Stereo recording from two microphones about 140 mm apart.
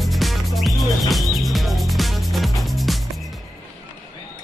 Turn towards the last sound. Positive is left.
turn(degrees=0)  # may be behind; listen again after turning